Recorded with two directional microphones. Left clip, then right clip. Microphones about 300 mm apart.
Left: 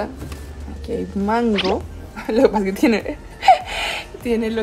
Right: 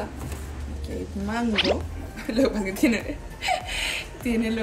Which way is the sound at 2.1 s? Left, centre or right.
Centre.